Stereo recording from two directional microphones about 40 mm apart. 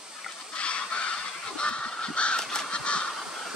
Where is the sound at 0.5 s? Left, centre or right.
Left.